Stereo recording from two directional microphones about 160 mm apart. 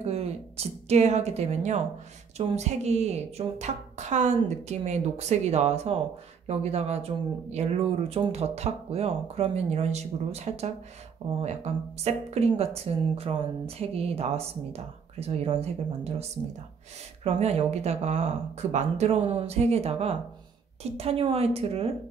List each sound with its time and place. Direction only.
0.0 s a woman's voice: 40° right (ahead or behind)